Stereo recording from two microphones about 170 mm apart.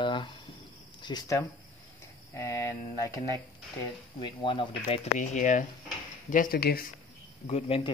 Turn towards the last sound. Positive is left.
turn(degrees=35)  # may be behind; listen again after turning